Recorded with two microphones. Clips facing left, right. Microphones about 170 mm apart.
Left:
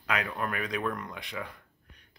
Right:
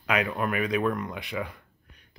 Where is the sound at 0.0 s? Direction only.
15° right (ahead or behind).